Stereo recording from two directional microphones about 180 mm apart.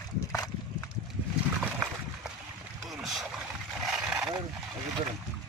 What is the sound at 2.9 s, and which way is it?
Boat, centre (ahead or behind).